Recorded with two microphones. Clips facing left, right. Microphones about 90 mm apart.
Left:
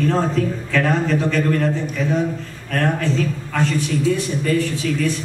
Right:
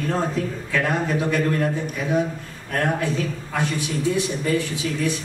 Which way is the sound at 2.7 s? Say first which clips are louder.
Left 2 dB; 15° right (ahead or behind).